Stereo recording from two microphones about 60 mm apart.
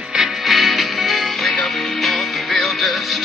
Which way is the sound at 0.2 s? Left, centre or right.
Centre.